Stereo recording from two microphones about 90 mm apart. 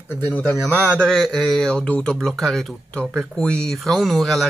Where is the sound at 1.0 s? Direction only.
5° left (ahead or behind).